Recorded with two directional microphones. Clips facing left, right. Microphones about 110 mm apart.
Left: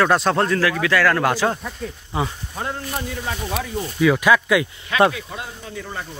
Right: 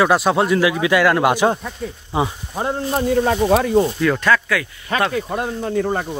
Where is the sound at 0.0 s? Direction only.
10° right (ahead or behind).